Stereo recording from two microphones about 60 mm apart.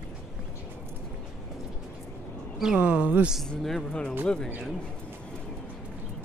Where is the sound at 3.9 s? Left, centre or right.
Centre.